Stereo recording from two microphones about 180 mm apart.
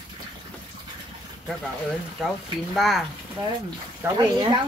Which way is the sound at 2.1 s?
Centre (ahead or behind).